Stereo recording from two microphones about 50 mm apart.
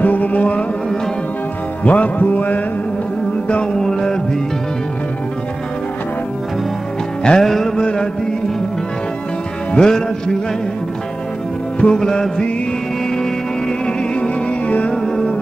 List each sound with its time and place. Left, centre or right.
0.0 s music: left
1.8 s music: left
3.7 s music: centre
7.2 s music: centre
9.7 s music: centre
11.8 s music: centre
14.7 s music: left